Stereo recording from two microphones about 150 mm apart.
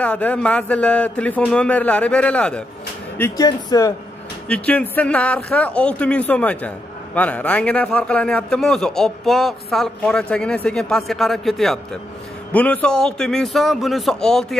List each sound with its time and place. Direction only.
0.0 s a man's voice: 10° left (ahead or behind); by 3.9 s 25° left (ahead or behind)
4.5 s a man's voice: 10° left (ahead or behind)